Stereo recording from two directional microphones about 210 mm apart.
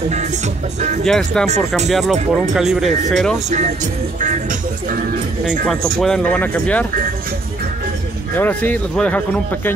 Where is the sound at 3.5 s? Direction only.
35° right (ahead or behind).